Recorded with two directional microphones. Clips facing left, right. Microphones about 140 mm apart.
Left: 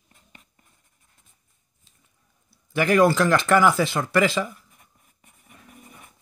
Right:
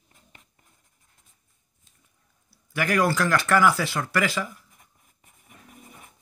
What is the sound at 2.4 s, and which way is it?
Speech, 25° left (ahead or behind).